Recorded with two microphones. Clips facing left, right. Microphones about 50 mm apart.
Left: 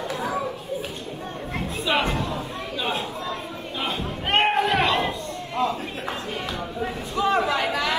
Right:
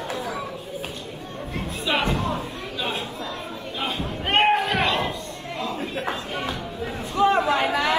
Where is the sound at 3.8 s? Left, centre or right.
Centre.